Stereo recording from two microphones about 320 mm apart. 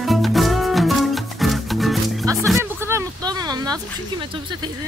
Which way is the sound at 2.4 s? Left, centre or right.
Centre.